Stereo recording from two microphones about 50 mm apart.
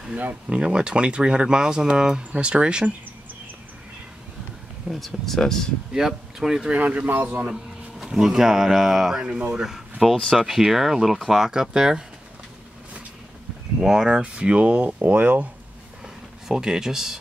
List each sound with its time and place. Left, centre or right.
0.2 s a man's voice: right
0.6 s speech: centre
4.8 s speech: centre
5.9 s speech: centre
6.7 s a man's voice: right
7.5 s speech: centre
10.2 s speech: centre
13.7 s speech: centre; by 15.4 s right
16.4 s speech: centre